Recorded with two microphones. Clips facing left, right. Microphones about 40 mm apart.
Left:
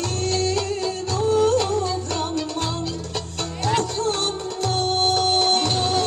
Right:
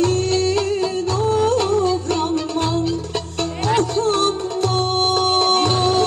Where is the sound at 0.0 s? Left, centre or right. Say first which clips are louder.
Right 6 dB; centre.